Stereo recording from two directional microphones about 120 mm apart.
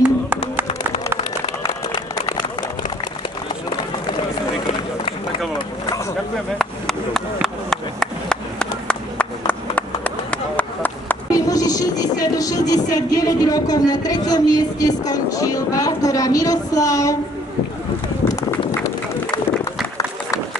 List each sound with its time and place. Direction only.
6.6 s chop: 5° left (ahead or behind)
7.4 s a sound: 5° left (ahead or behind)
11.3 s vehicle: 30° left (ahead or behind)